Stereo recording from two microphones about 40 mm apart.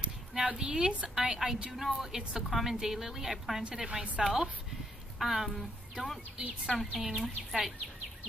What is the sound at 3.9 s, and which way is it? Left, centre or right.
Speech, right.